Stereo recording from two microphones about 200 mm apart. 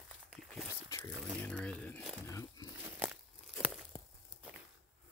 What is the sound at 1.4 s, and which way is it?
Crumpling, 5° left (ahead or behind).